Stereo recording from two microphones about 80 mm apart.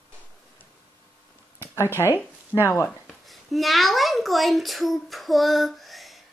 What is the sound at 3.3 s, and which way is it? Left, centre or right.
A child's voice, centre.